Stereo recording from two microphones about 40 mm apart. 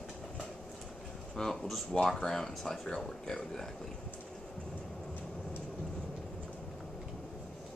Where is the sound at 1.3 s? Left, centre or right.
Centre.